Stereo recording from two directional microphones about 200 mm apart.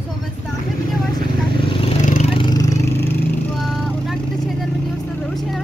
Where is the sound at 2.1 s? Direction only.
30° left (ahead or behind); by 3.2 s 15° left (ahead or behind).